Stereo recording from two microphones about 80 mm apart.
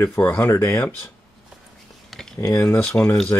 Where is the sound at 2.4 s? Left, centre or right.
Left.